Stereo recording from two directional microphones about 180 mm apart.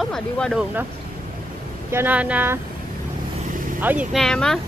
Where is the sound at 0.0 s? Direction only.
Centre (ahead or behind).